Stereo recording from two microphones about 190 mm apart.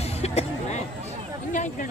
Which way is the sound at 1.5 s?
40° left (ahead or behind).